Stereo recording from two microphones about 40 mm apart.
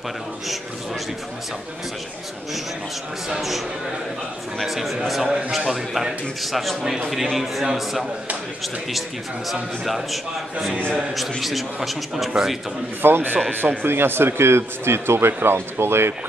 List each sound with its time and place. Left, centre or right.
3.3 s a man's voice: centre
4.6 s a man's voice: centre
9.5 s a man's voice: centre
13.0 s a man's voice: right